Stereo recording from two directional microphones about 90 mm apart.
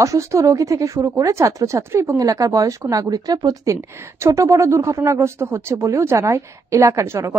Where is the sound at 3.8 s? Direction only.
30° right (ahead or behind).